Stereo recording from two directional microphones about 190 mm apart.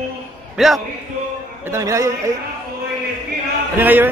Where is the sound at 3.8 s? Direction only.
10° right (ahead or behind).